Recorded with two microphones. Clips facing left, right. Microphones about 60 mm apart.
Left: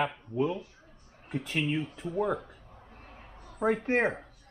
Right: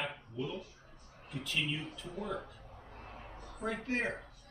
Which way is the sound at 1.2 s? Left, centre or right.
Left.